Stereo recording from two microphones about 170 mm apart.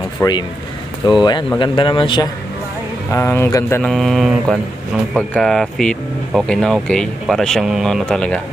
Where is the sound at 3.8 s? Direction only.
Centre (ahead or behind).